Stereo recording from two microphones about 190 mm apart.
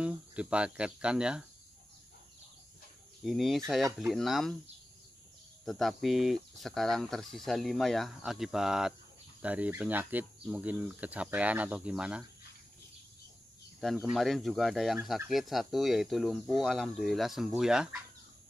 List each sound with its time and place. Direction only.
0.0 s speech: 5° right (ahead or behind)
3.3 s speech: centre (ahead or behind)
5.7 s speech: centre (ahead or behind)
13.7 s speech: centre (ahead or behind)